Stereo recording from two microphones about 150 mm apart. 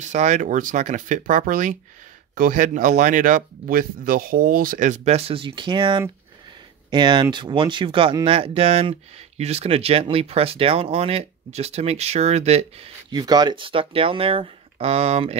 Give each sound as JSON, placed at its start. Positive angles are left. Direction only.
{"t": 0.0, "sound": "speech", "side_deg": -50}
{"t": 13.1, "sound": "speech", "side_deg": -25}